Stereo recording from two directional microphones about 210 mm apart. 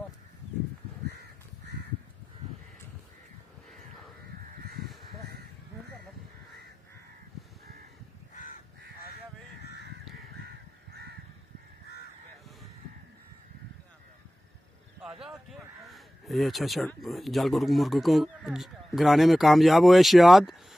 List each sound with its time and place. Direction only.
10.4 s crow: 50° right (ahead or behind)
15.0 s speech: centre (ahead or behind)